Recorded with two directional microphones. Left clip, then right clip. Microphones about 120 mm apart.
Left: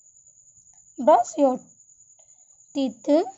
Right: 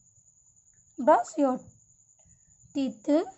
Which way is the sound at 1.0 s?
35° left (ahead or behind).